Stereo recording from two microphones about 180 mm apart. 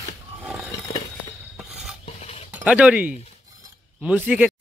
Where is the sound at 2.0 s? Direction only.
35° left (ahead or behind).